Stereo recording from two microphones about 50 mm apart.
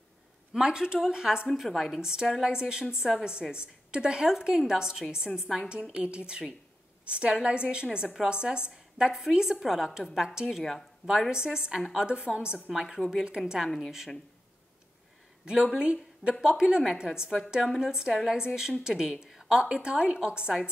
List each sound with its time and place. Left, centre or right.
0.5 s speech: centre
1.5 s a woman's voice: centre
2.0 s a woman's voice: centre
15.4 s a woman's voice: centre